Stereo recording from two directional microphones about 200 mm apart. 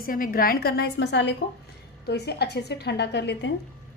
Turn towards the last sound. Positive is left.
turn(degrees=60)  # may be behind; listen again after turning